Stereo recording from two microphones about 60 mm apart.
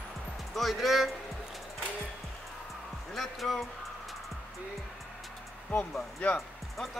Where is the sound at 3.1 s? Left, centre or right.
Centre.